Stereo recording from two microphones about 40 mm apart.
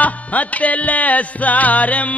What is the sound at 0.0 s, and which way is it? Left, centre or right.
Music, left.